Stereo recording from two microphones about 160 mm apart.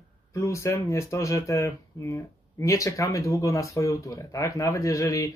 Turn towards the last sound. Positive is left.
turn(degrees=20)  # may be behind; listen again after turning